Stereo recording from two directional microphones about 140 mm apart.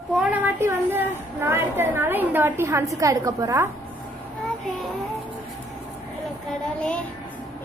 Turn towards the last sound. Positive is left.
turn(degrees=5)  # may be behind; listen again after turning